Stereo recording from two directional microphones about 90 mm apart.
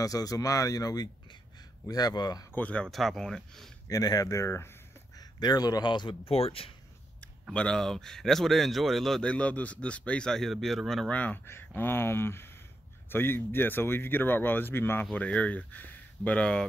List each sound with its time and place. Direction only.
0.0 s speech: 40° left (ahead or behind)
2.5 s speech: 15° left (ahead or behind)
2.9 s speech: centre (ahead or behind)
3.8 s speech: 40° left (ahead or behind)
5.4 s speech: 50° left (ahead or behind); by 6.7 s 90° left
7.5 s speech: 10° left (ahead or behind)
11.1 s speech: 15° left (ahead or behind)